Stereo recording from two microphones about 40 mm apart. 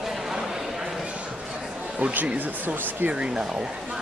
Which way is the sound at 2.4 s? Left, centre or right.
Right.